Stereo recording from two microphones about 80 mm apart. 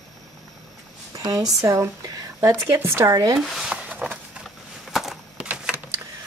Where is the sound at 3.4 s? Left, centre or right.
Centre.